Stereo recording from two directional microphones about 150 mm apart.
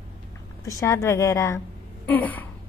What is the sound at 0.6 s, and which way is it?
A woman's voice, 20° left (ahead or behind).